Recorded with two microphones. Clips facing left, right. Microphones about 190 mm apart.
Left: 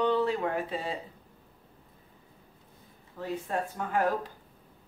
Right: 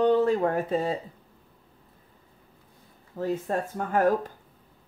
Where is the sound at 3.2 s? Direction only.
45° right (ahead or behind).